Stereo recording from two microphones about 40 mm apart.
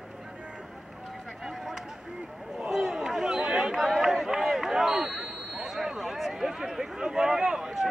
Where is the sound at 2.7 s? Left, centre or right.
Centre.